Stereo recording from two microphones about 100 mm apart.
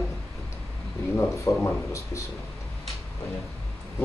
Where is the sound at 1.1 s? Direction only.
20° left (ahead or behind).